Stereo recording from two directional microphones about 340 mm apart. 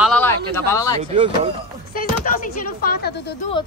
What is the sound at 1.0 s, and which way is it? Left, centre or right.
Speech, centre.